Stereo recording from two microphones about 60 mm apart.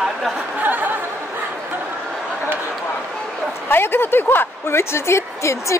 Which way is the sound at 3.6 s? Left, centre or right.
Left.